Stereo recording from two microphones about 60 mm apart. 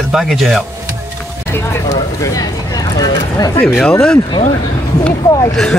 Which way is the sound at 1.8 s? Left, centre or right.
Left.